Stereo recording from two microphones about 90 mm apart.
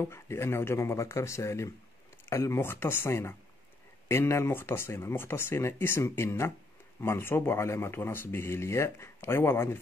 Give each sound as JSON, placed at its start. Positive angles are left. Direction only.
{"t": 0.0, "sound": "speech", "side_deg": 30}